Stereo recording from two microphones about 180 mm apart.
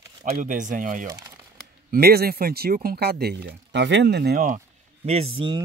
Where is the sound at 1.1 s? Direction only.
15° right (ahead or behind).